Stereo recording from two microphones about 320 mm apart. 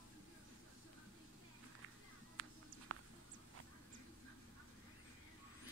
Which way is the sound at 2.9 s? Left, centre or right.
Right.